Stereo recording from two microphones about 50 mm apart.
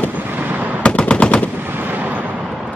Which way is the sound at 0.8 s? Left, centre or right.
Left.